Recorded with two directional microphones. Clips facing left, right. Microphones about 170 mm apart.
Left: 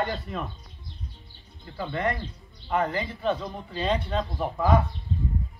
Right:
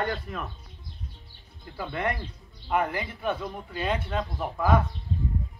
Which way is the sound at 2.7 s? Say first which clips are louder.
Left 1 dB; 10° right (ahead or behind).